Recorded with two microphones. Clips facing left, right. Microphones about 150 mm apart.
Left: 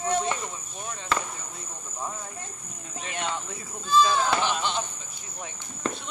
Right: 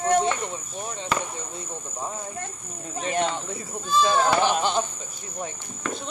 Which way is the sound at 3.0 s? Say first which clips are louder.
Right 7 dB; 40° right (ahead or behind).